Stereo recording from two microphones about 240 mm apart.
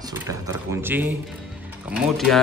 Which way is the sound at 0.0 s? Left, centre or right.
Centre.